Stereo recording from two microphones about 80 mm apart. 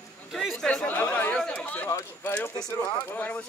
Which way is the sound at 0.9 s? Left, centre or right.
Left.